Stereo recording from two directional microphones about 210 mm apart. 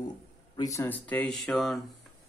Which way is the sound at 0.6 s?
15° left (ahead or behind).